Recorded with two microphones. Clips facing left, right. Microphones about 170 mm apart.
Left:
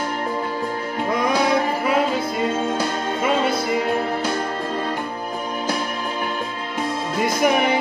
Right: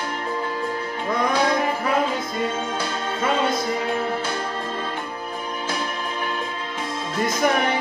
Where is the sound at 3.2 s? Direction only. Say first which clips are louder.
Left 1 dB; 10° left (ahead or behind).